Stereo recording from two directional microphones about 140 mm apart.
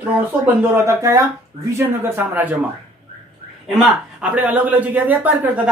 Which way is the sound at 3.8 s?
5° right (ahead or behind).